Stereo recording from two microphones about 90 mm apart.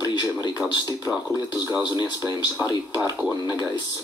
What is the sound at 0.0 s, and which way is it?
Speech, 45° left (ahead or behind).